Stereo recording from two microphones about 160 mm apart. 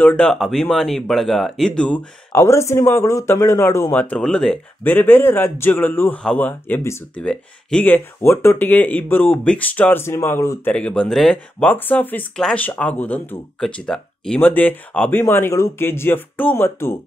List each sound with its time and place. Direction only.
0.0 s speech: 5° left (ahead or behind)
2.3 s speech: 20° left (ahead or behind)